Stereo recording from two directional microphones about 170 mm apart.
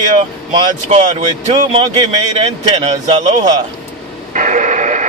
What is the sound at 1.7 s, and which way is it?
Speech, 30° right (ahead or behind).